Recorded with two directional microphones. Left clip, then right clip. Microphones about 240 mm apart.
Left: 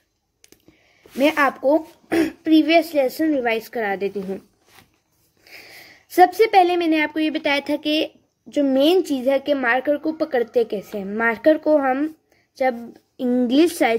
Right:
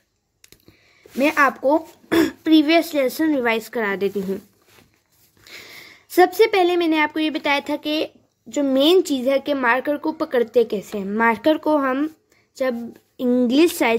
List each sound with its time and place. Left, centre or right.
1.1 s speech: centre
2.6 s a woman's voice: right
5.4 s speech: right; by 12.1 s centre
13.2 s speech: centre